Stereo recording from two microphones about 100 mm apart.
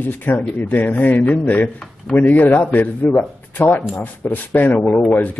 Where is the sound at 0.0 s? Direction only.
20° left (ahead or behind).